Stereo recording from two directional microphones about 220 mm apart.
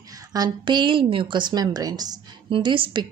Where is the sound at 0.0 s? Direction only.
15° right (ahead or behind).